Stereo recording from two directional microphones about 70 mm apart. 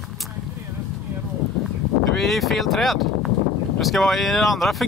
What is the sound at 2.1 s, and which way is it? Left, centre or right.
Speech, centre.